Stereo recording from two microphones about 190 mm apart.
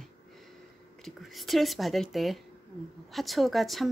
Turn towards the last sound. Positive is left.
turn(degrees=0)  # may be behind; listen again after turning